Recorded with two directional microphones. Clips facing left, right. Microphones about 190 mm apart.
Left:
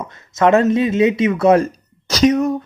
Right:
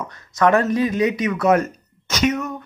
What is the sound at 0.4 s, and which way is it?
Speech, 25° left (ahead or behind).